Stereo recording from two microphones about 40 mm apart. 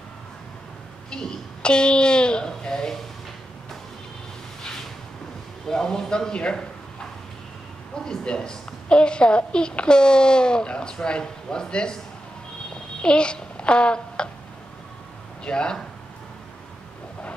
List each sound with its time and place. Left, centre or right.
1.1 s a woman's voice: left
5.7 s speech: centre
8.0 s a woman's voice: centre
13.0 s a child's voice: left
15.4 s a woman's voice: left